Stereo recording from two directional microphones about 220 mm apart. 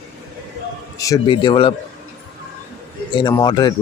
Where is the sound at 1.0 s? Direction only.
20° left (ahead or behind).